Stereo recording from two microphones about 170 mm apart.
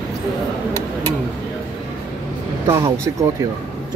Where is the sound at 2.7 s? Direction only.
20° right (ahead or behind).